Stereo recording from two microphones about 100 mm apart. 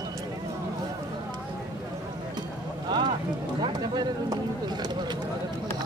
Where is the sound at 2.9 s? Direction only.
50° right (ahead or behind).